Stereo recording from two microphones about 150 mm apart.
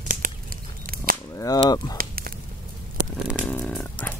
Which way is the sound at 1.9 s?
75° right (ahead or behind).